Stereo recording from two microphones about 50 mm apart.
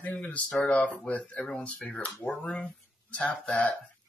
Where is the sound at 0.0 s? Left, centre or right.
Left.